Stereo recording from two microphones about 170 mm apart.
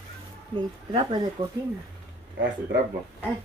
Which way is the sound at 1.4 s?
30° right (ahead or behind).